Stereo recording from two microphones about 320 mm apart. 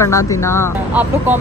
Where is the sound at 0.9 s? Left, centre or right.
Centre.